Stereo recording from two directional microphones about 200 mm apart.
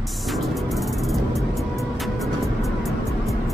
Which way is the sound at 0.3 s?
Centre (ahead or behind).